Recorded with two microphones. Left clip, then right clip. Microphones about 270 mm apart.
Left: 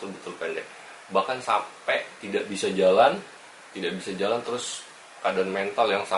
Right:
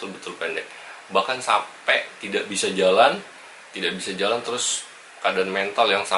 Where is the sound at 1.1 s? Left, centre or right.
Centre.